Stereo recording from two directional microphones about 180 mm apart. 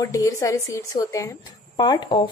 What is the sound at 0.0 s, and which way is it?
Speech, 20° left (ahead or behind).